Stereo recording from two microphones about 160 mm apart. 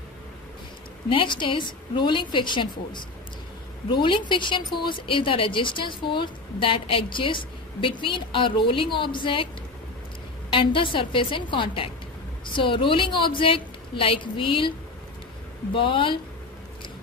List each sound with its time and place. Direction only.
1.0 s a woman's voice: 30° left (ahead or behind)
10.5 s a woman's voice: 30° left (ahead or behind)
15.7 s a woman's voice: 30° left (ahead or behind)